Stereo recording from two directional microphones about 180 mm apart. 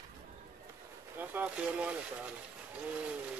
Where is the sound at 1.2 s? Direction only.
10° right (ahead or behind).